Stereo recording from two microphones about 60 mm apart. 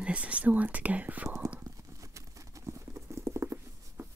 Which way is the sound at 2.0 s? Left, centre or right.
Right.